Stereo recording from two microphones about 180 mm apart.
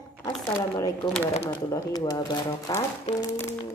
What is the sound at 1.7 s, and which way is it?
Speech, 20° left (ahead or behind).